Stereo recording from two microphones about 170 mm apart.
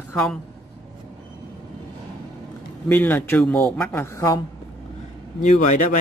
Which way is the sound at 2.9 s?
10° left (ahead or behind).